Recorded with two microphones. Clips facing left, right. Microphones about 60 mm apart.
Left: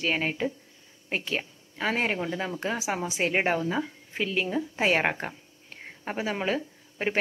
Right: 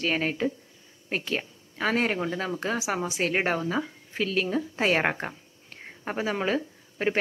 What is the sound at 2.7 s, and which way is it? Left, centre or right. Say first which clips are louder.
Speech: right 1 dB; left.